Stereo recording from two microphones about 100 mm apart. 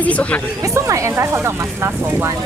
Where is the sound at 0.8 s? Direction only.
30° right (ahead or behind).